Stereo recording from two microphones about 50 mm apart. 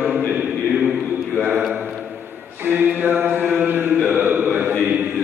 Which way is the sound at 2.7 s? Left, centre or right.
Right.